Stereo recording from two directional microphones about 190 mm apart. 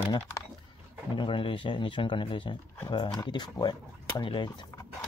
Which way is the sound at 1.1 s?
25° left (ahead or behind).